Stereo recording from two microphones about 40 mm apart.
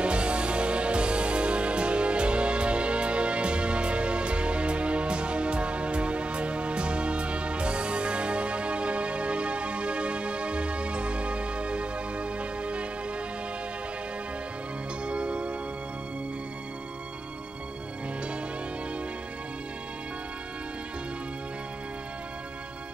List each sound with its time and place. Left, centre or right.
0.0 s music: right
15.0 s music: right